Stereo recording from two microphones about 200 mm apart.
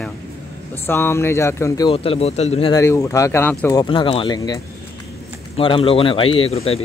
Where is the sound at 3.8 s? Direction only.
25° left (ahead or behind).